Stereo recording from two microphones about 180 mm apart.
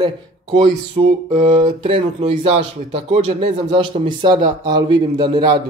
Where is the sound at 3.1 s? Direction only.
35° right (ahead or behind).